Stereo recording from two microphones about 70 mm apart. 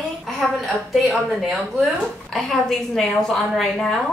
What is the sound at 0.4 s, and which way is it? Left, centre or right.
A woman's voice, centre.